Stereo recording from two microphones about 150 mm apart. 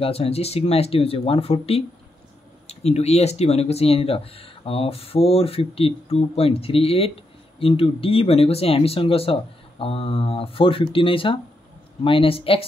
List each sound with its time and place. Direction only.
0.0 s speech: 40° left (ahead or behind)